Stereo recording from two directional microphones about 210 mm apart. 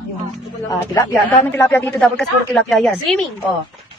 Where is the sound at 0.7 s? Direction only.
10° left (ahead or behind).